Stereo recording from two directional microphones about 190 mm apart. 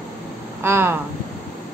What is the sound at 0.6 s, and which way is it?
Speech, 10° right (ahead or behind).